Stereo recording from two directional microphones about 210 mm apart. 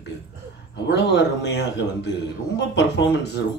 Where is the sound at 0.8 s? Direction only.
55° left (ahead or behind).